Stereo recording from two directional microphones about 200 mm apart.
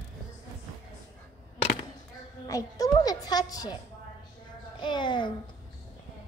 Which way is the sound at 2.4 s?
15° left (ahead or behind).